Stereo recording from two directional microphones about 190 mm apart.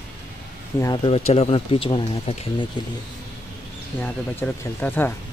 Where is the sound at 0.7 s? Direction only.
20° left (ahead or behind).